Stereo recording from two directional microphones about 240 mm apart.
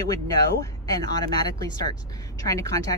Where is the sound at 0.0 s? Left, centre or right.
Centre.